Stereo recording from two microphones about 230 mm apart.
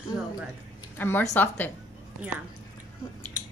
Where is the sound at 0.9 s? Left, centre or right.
Centre.